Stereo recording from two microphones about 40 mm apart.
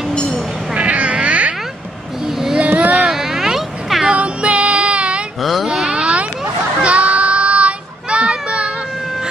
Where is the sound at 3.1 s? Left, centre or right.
Centre.